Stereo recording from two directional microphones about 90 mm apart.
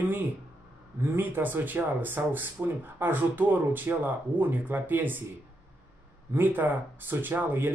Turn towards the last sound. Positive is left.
turn(degrees=-20)  # may be behind; listen again after turning